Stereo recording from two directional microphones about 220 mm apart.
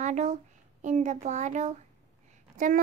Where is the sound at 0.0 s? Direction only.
35° right (ahead or behind).